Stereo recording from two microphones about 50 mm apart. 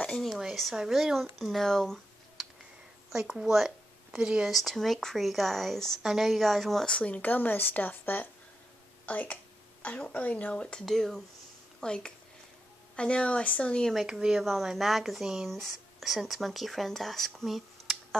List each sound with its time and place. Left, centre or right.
0.1 s speech: centre
3.1 s a woman's voice: centre
4.5 s speech: centre
7.0 s speech: left
9.0 s a sound: left
9.9 s speech: left
10.5 s speech: centre
10.9 s speech: centre
11.8 s speech: centre
14.1 s speech: centre
14.4 s speech: centre